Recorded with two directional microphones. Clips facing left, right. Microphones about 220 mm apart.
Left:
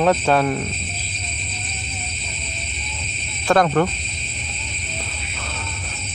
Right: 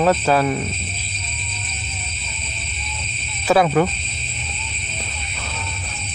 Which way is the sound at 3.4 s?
5° right (ahead or behind).